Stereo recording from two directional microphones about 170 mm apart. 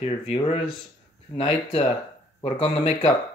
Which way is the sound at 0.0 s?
35° left (ahead or behind).